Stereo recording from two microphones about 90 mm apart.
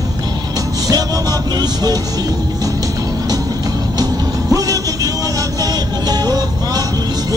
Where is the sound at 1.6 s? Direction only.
45° right (ahead or behind).